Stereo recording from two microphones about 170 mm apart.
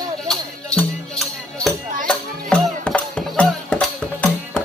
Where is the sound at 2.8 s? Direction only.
5° left (ahead or behind).